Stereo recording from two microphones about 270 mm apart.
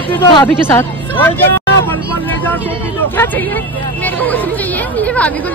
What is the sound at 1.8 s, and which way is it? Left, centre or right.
Vehicle, centre.